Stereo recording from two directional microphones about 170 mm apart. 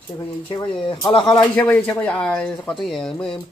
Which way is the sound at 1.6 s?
10° left (ahead or behind).